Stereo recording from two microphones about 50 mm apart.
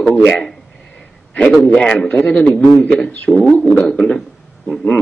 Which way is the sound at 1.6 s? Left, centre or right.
Left.